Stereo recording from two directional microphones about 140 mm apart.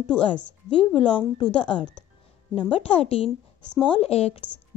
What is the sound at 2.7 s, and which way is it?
A woman's voice, 40° left (ahead or behind).